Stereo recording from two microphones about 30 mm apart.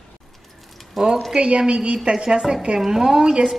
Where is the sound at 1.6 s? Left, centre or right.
Right.